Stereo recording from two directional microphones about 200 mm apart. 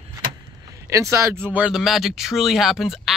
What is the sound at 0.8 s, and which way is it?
Speech, 15° right (ahead or behind).